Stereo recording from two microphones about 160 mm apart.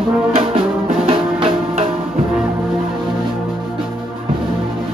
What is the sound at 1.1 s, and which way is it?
Music, 35° right (ahead or behind).